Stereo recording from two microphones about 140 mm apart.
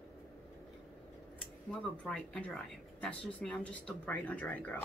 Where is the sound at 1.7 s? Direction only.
10° left (ahead or behind).